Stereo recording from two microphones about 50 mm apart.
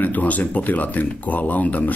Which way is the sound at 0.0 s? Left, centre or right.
Left.